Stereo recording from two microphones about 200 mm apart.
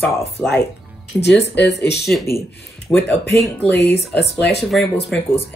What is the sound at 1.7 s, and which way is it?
Speech, 55° left (ahead or behind).